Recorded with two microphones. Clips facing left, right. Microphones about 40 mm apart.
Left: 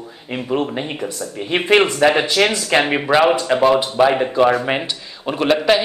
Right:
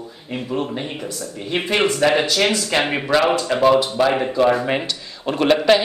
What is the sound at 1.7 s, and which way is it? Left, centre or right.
A man's voice, centre.